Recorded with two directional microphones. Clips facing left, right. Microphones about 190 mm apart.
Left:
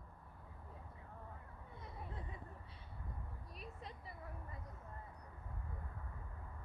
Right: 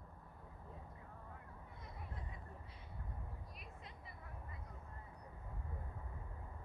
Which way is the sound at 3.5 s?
35° left (ahead or behind).